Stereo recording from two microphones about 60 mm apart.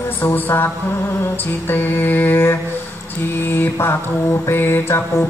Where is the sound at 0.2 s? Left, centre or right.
Left.